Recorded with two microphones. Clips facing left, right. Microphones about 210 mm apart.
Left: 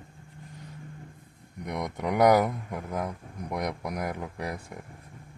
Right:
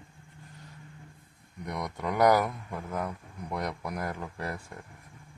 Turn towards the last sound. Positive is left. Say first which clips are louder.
# left 2 dB
turn(degrees=15)  # may be behind; listen again after turning